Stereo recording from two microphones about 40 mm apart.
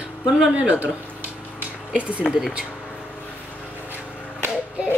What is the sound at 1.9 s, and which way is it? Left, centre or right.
Speech, right.